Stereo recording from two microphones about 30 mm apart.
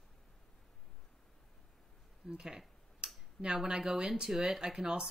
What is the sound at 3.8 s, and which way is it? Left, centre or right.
Speech, centre.